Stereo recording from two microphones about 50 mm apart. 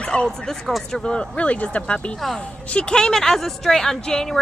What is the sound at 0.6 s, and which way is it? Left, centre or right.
Speech, centre.